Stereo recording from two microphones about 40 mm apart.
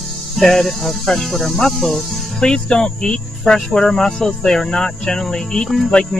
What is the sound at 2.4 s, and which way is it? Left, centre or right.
Speech, centre.